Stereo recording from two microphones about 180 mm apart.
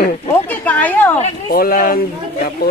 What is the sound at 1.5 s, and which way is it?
Speech, 55° left (ahead or behind).